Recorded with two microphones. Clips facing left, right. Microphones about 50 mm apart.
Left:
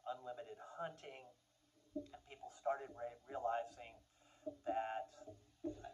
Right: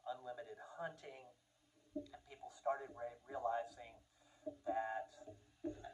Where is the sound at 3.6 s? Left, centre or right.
Left.